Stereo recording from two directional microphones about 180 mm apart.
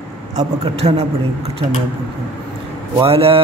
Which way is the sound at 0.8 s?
40° right (ahead or behind).